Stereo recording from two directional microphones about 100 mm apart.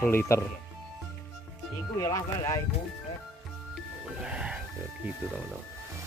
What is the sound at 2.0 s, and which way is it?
Speech, 35° left (ahead or behind).